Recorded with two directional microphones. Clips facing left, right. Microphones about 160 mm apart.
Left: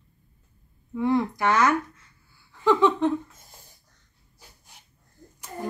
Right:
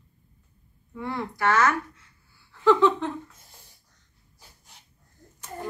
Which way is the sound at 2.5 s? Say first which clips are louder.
Right 1 dB; 15° left (ahead or behind).